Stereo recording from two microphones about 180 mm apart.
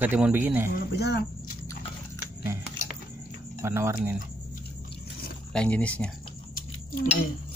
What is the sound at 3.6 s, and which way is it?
Speech, 15° right (ahead or behind).